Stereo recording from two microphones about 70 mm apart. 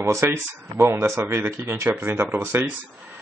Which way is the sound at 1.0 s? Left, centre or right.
Right.